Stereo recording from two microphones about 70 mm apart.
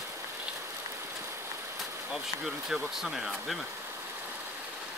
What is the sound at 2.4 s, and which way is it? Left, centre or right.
Speech, centre.